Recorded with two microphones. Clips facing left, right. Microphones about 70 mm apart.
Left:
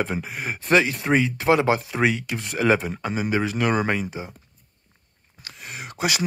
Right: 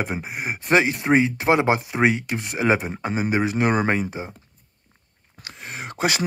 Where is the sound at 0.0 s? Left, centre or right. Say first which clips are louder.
Even; right.